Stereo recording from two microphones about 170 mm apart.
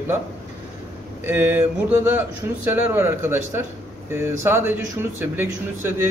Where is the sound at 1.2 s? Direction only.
10° right (ahead or behind).